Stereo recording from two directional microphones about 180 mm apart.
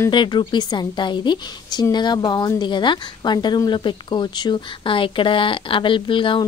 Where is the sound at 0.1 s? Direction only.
25° left (ahead or behind).